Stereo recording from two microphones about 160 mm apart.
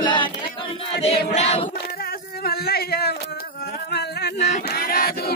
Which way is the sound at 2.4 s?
70° left (ahead or behind).